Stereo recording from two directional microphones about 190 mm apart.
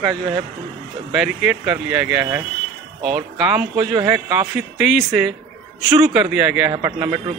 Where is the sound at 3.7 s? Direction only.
15° right (ahead or behind).